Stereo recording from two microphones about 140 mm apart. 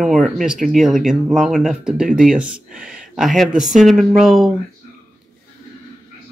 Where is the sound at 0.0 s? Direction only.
Centre (ahead or behind).